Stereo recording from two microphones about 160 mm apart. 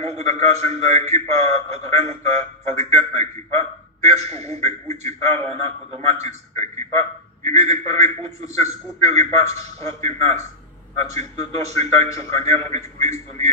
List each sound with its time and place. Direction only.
0.0 s a man's voice: 40° right (ahead or behind)